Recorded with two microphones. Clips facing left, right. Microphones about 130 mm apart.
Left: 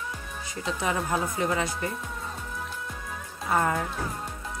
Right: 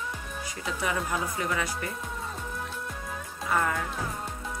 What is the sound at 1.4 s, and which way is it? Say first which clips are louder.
Speech: left 4 dB; 30° left (ahead or behind).